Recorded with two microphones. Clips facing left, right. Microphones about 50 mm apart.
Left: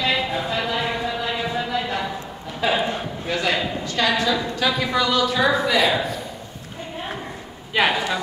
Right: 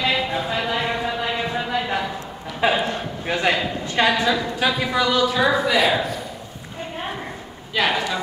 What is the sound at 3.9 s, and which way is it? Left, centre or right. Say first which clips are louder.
A woman's voice: right 2 dB; centre.